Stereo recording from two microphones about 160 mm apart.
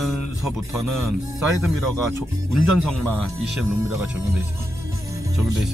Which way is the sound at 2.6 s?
Centre (ahead or behind).